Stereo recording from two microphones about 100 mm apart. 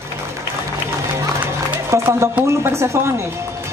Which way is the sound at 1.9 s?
25° right (ahead or behind).